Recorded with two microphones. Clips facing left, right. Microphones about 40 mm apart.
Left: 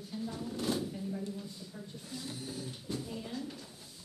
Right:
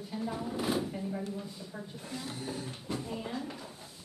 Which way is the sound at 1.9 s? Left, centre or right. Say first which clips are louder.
Right 2 dB; right.